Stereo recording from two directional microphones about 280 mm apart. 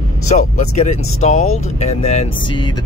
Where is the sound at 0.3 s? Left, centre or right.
Left.